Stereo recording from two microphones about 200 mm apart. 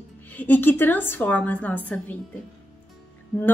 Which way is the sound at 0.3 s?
10° left (ahead or behind).